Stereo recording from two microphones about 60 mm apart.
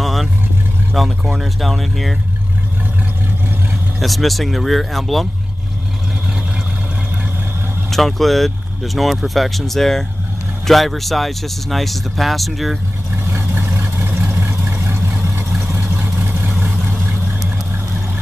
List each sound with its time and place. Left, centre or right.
0.0 s vehicle: centre
0.9 s speech: centre
4.0 s speech: centre
7.9 s speech: centre
13.3 s vehicle: right